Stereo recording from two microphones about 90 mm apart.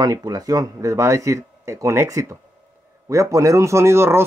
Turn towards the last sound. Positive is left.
turn(degrees=-30)  # may be behind; listen again after turning